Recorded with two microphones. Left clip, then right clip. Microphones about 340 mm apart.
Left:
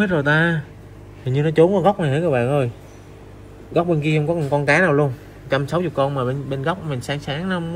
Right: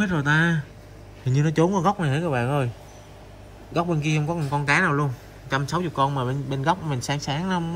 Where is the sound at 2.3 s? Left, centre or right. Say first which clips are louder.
Left 6 dB; right.